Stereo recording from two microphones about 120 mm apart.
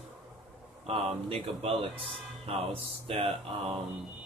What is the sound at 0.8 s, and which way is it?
Speech, 55° right (ahead or behind).